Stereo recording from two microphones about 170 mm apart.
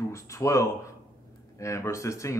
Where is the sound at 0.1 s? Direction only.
20° left (ahead or behind).